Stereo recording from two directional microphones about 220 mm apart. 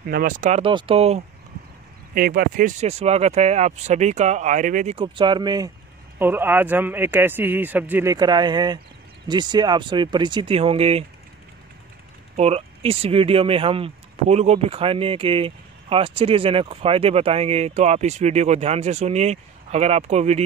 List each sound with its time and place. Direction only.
0.0 s speech: 45° right (ahead or behind); by 1.2 s 25° right (ahead or behind)
2.1 s a man's voice: 40° right (ahead or behind)
12.4 s speech: 25° right (ahead or behind)